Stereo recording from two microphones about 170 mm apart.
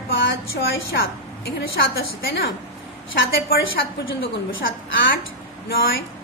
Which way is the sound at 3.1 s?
65° left (ahead or behind).